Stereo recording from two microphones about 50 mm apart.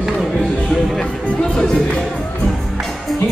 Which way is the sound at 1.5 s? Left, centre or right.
Centre.